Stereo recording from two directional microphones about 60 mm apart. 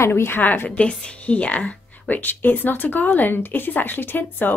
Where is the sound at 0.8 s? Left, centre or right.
Centre.